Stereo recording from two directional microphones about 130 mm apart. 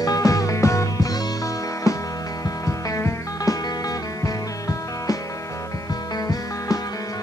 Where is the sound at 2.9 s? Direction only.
25° left (ahead or behind).